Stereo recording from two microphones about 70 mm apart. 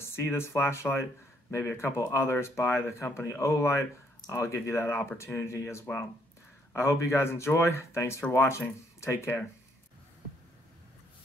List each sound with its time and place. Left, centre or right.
0.0 s speech: left